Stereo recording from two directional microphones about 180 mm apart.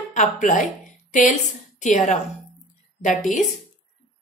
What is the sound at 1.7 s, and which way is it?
Speech, 40° left (ahead or behind).